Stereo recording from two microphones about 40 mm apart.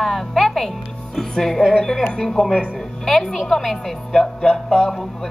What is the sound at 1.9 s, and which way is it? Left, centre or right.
A woman's voice, centre.